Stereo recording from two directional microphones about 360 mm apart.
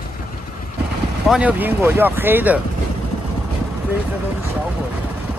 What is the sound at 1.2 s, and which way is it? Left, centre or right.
Speech, centre.